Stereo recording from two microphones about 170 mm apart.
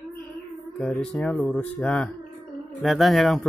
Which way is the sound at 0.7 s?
5° left (ahead or behind).